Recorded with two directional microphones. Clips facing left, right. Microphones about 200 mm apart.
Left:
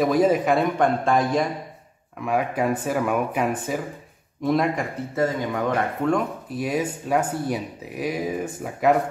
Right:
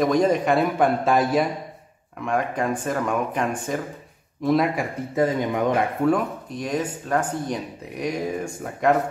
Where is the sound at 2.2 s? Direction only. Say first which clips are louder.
Left 1 dB; 5° left (ahead or behind).